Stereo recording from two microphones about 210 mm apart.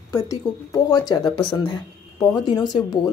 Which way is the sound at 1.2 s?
Centre (ahead or behind).